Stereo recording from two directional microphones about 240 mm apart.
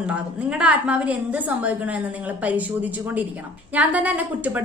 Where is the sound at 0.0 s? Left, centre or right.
Centre.